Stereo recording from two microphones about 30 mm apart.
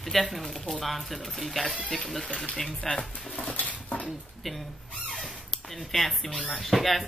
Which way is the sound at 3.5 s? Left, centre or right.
Left.